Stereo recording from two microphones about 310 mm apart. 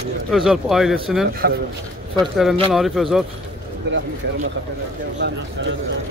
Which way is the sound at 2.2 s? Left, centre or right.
Centre.